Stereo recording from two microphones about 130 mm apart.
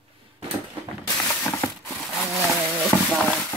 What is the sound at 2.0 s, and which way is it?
Roaring cats, centre (ahead or behind).